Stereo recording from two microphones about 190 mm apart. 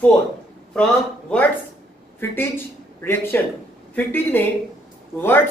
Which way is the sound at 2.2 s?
10° left (ahead or behind).